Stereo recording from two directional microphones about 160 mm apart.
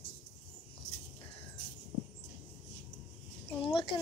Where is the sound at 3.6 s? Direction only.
35° left (ahead or behind).